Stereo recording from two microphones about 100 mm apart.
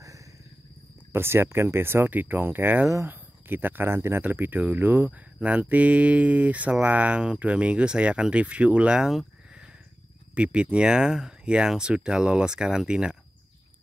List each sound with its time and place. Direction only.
1.1 s speech: 25° right (ahead or behind); by 13.2 s 10° right (ahead or behind)